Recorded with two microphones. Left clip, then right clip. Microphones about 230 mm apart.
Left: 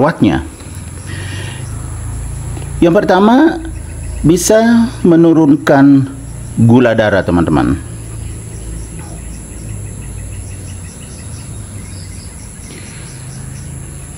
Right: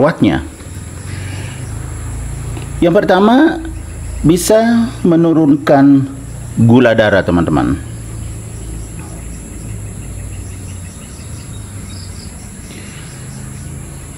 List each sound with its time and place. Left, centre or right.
0.0 s speech: centre
2.8 s speech: centre